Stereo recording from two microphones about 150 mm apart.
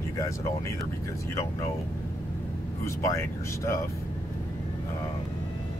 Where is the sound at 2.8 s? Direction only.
20° left (ahead or behind).